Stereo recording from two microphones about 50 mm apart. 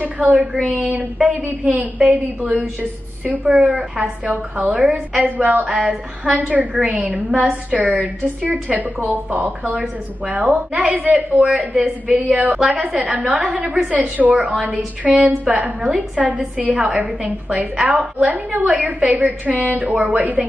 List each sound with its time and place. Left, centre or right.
0.0 s a woman's voice: right
15.0 s a woman's voice: centre
15.5 s a woman's voice: right